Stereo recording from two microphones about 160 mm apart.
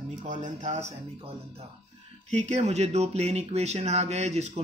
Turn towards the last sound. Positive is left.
turn(degrees=-45)  # may be behind; listen again after turning